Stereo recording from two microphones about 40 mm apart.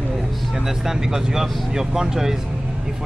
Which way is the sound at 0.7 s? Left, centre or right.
Centre.